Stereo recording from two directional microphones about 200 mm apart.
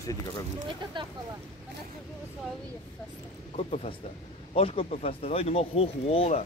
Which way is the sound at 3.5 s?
30° left (ahead or behind).